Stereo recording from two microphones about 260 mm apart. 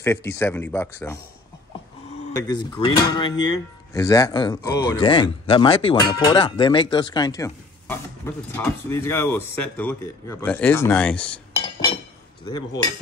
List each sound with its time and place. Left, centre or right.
0.0 s speech: centre
2.3 s speech: centre
12.4 s speech: centre